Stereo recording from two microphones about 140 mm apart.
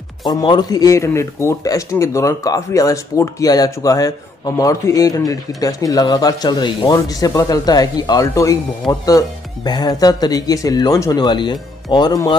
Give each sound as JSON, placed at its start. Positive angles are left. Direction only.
{"t": 0.2, "sound": "speech", "side_deg": 30}